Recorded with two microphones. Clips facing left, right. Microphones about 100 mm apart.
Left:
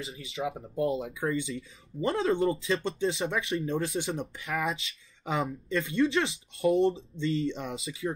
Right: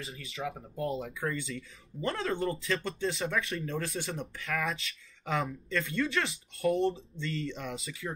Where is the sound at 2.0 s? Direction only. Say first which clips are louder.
Left 5 dB; 30° left (ahead or behind).